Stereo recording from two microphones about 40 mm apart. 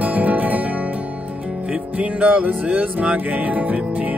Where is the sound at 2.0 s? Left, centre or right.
Right.